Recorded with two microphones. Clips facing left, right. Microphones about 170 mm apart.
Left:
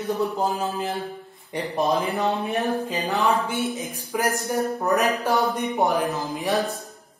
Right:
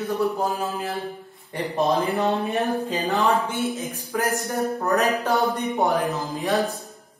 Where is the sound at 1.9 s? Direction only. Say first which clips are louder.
Right 1 dB; centre (ahead or behind).